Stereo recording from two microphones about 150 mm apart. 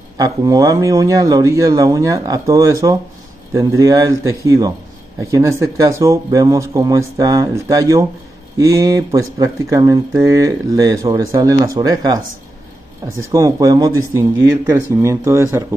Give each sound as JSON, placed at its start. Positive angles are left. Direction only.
{"t": 0.2, "sound": "speech", "side_deg": -25}
{"t": 13.2, "sound": "speech", "side_deg": -20}